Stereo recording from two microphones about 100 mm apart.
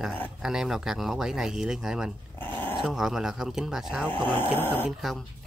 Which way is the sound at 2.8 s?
5° right (ahead or behind).